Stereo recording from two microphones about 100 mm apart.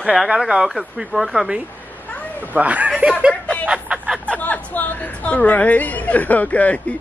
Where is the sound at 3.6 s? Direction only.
10° right (ahead or behind).